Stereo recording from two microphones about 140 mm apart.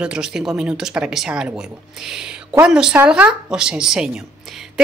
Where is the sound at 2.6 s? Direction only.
5° right (ahead or behind).